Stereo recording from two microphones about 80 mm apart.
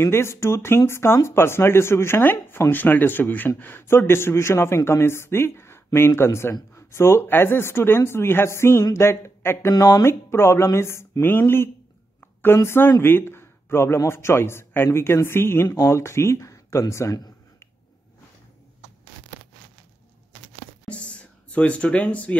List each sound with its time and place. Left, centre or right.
0.0 s speech: left
2.7 s speech: left
8.9 s a sound: left
9.7 s speech: left
10.0 s speech: left
20.9 s a sound: centre